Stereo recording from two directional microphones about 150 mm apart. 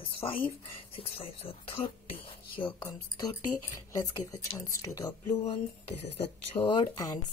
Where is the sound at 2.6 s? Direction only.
25° left (ahead or behind).